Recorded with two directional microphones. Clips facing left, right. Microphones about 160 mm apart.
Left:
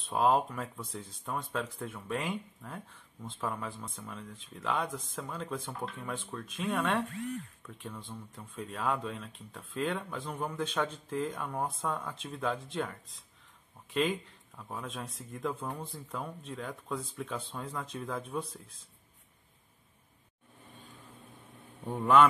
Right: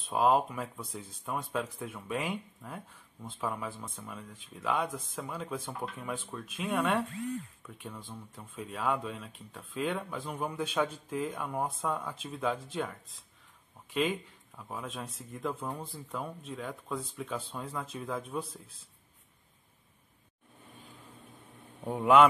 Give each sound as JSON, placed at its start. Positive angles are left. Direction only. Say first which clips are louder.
{"t": 0.1, "sound": "speech", "louder": "right 1 dB", "side_deg": -5}
{"t": 21.8, "sound": "speech", "louder": "right 2 dB", "side_deg": -10}